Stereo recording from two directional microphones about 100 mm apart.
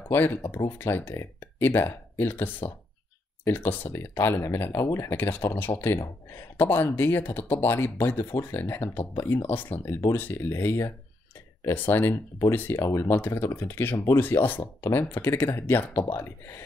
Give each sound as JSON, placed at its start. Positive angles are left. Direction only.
{"t": 0.1, "sound": "speech", "side_deg": 20}